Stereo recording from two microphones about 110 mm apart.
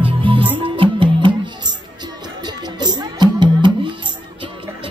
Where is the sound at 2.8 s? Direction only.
40° right (ahead or behind).